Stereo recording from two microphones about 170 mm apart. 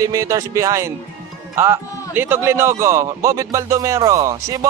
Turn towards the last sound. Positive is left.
turn(degrees=-20)  # may be behind; listen again after turning